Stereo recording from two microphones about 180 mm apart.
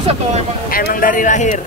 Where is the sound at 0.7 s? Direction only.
50° left (ahead or behind).